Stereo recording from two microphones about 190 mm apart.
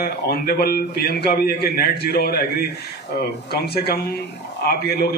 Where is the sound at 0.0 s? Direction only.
55° left (ahead or behind).